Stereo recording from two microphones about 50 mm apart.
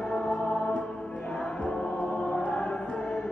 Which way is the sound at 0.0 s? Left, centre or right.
Centre.